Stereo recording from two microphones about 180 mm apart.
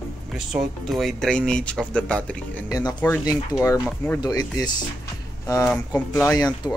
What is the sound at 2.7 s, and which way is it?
Speech, 20° left (ahead or behind).